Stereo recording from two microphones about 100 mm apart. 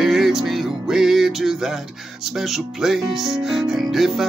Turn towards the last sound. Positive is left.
turn(degrees=-5)  # may be behind; listen again after turning